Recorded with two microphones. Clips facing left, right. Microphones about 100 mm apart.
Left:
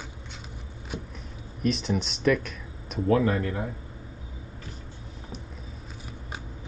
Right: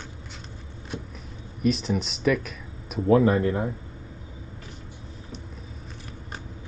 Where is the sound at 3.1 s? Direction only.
20° right (ahead or behind).